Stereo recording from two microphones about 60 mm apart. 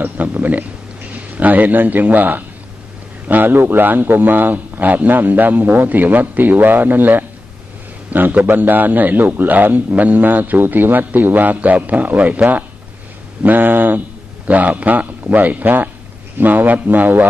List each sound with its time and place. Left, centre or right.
0.0 s a man's voice: right
13.4 s a man's voice: right